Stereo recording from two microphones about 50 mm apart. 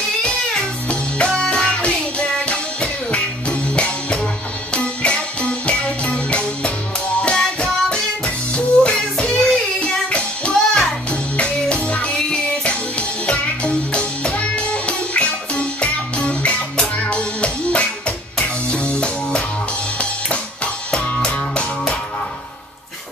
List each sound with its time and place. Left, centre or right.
0.8 s music: left